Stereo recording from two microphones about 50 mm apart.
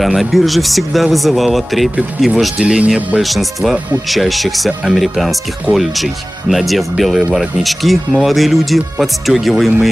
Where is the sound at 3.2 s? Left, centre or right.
Centre.